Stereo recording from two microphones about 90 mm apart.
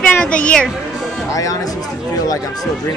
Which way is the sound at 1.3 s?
40° left (ahead or behind).